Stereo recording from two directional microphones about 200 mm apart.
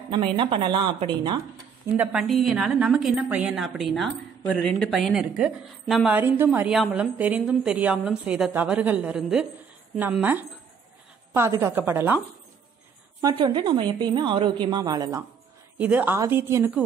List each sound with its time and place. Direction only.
0.1 s a woman's voice: 25° right (ahead or behind)
1.9 s a woman's voice: 5° right (ahead or behind)
13.2 s a woman's voice: 25° right (ahead or behind)